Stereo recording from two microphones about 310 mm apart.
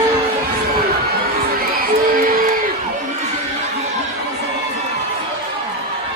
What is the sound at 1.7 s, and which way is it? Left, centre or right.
Music, right.